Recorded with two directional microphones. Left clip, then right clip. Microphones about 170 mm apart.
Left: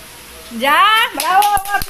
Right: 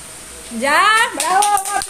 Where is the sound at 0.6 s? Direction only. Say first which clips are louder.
Left 2 dB; 5° right (ahead or behind).